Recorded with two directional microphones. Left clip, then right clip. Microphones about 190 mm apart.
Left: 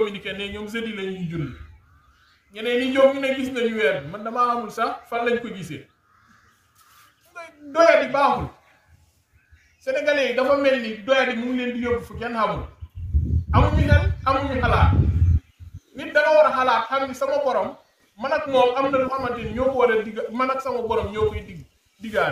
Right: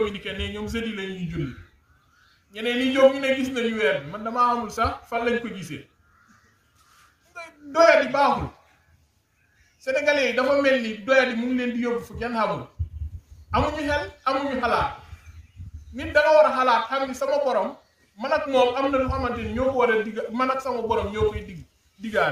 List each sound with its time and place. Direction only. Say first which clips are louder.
0.0 s a man's voice: left 2 dB; 10° right (ahead or behind)
2.5 s a man's voice: left 2 dB; 10° right (ahead or behind)
7.3 s a man's voice: left 1 dB; 10° right (ahead or behind)
9.8 s a man's voice: left 1 dB; 15° right (ahead or behind)
13.5 s a man's voice: left 2 dB; 15° right (ahead or behind)
16.0 s a man's voice: left 1 dB; 15° right (ahead or behind)